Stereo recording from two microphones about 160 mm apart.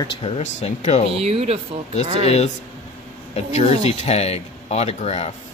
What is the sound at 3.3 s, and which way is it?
Speech, 45° left (ahead or behind).